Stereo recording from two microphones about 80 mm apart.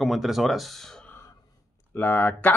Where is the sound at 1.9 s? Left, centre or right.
Left.